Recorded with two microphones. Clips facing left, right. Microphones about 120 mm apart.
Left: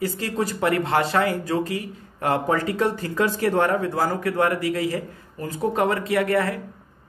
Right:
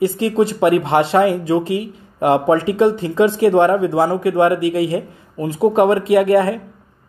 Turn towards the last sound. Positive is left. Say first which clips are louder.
# right 8 dB
turn(degrees=-25)  # may be behind; listen again after turning